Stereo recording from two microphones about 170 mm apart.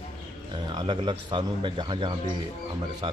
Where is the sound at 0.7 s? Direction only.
30° right (ahead or behind).